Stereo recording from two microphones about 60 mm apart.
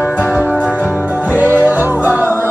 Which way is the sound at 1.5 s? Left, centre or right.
Right.